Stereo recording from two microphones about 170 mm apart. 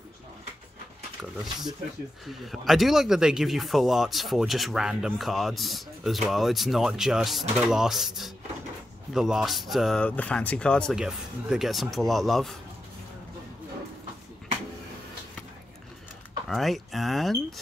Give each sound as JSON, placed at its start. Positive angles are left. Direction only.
{"t": 1.4, "sound": "speech", "side_deg": 0}
{"t": 16.4, "sound": "speech", "side_deg": 0}